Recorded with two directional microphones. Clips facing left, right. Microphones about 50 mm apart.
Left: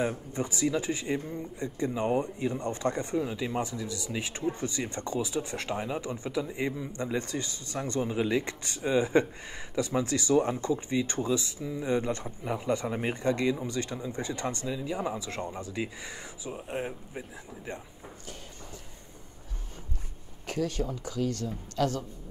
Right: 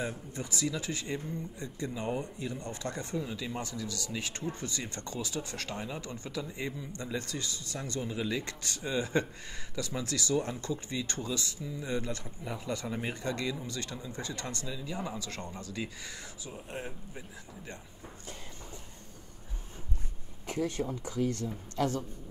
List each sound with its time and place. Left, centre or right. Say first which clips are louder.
0.0 s speech: left 6 dB; left
20.4 s speech: left 2 dB; right